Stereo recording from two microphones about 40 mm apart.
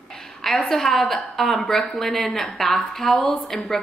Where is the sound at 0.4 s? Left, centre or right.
Centre.